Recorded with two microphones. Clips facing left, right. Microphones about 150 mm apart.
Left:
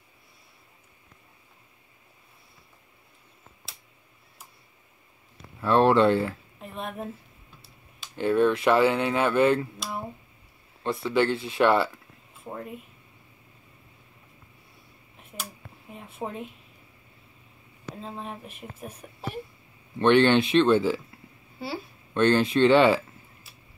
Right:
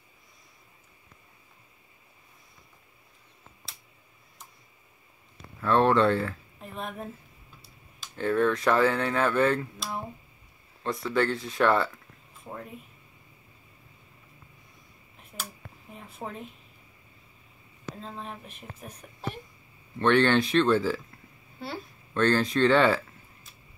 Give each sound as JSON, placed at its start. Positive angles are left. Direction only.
{"t": 5.6, "sound": "speech", "side_deg": 25}
{"t": 6.6, "sound": "a sound", "side_deg": 0}
{"t": 8.2, "sound": "speech", "side_deg": 25}
{"t": 8.7, "sound": "speech", "side_deg": 10}
{"t": 9.6, "sound": "speech", "side_deg": 0}
{"t": 10.8, "sound": "speech", "side_deg": 25}
{"t": 12.4, "sound": "speech", "side_deg": 5}
{"t": 15.3, "sound": "a sound", "side_deg": 5}
{"t": 15.9, "sound": "a woman's voice", "side_deg": 0}
{"t": 17.9, "sound": "speech", "side_deg": 5}
{"t": 20.0, "sound": "speech", "side_deg": 20}
{"t": 21.5, "sound": "a woman's voice", "side_deg": 5}
{"t": 22.1, "sound": "speech", "side_deg": 25}